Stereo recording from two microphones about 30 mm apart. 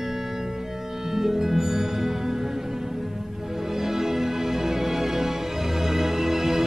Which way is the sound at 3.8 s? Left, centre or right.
Centre.